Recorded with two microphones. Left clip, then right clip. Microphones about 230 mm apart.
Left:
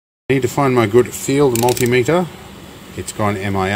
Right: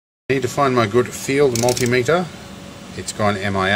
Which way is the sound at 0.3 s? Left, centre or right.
Left.